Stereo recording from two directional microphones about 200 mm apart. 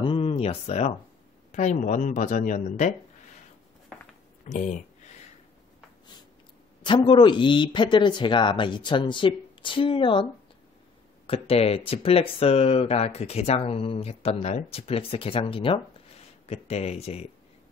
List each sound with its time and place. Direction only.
0.0 s speech: 25° left (ahead or behind)
4.5 s speech: 40° left (ahead or behind)
6.8 s speech: 25° left (ahead or behind)
11.2 s speech: 30° left (ahead or behind)